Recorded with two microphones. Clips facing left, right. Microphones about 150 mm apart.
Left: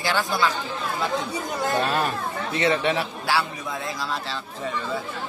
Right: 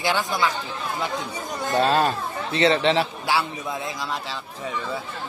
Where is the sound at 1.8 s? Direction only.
30° right (ahead or behind).